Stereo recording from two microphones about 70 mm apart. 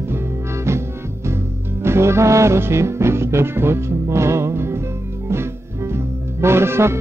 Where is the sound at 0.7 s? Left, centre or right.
Right.